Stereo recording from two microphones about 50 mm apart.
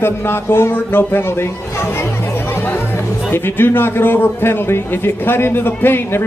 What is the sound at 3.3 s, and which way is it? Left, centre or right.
A man's voice, left.